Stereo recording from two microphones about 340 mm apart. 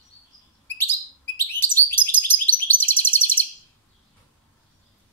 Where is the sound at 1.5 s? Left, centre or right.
Centre.